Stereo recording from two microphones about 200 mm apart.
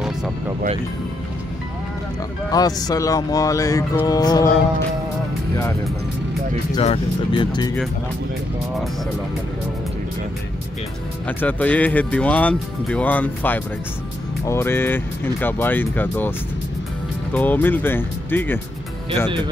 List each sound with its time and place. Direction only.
2.5 s speech: 20° left (ahead or behind)
6.7 s speech: 25° left (ahead or behind)
11.2 s speech: 5° left (ahead or behind)